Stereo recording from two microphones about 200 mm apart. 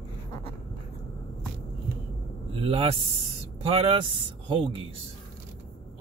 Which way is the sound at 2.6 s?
30° right (ahead or behind).